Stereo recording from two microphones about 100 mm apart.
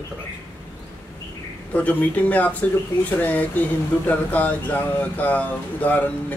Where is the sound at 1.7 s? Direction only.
15° left (ahead or behind).